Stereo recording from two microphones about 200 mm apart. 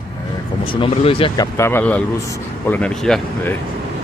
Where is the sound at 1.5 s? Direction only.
10° left (ahead or behind).